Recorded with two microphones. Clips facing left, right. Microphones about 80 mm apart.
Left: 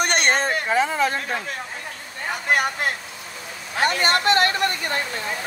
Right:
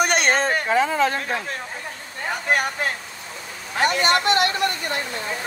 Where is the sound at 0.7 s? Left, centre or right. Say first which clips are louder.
Right 1 dB; centre.